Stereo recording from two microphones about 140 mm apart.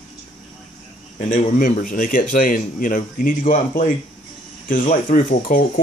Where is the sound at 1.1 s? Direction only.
60° left (ahead or behind).